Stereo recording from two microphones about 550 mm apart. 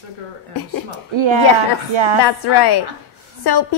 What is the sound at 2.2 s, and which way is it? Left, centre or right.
A woman's voice, left.